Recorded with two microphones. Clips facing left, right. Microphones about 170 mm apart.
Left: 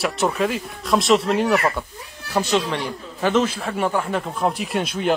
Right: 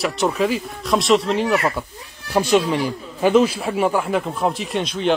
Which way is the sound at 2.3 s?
15° right (ahead or behind).